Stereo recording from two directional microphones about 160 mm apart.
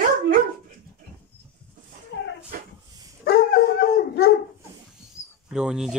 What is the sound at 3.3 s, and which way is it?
Dog, 70° left (ahead or behind).